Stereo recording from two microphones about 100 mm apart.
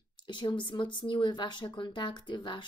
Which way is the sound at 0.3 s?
50° left (ahead or behind).